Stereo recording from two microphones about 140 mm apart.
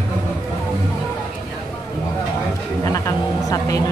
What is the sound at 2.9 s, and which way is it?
Speech, 25° left (ahead or behind).